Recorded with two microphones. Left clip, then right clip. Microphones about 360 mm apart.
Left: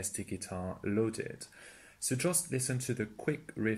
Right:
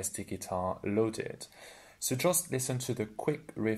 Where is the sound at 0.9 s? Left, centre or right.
Right.